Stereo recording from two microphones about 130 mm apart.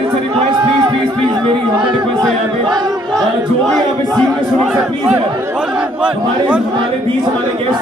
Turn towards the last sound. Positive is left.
turn(degrees=-5)  # may be behind; listen again after turning